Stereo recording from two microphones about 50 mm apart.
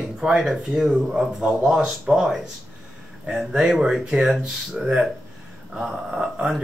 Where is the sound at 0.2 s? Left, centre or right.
Centre.